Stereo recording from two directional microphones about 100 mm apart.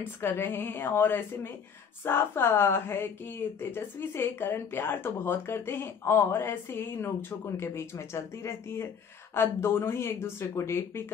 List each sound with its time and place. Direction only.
0.0 s speech: 20° left (ahead or behind)